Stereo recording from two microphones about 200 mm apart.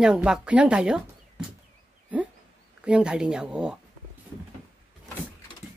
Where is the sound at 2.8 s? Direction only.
5° right (ahead or behind).